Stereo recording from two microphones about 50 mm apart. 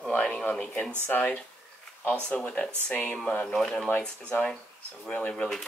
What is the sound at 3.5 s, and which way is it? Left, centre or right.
Speech, centre.